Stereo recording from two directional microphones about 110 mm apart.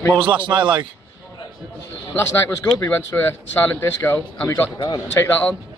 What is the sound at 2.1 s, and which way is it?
A man's voice, 20° left (ahead or behind).